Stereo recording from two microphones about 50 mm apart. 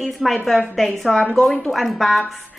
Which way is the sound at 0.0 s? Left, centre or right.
Centre.